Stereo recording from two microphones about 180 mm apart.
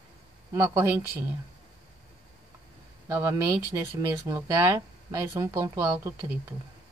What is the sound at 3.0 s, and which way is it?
Speech, 15° right (ahead or behind).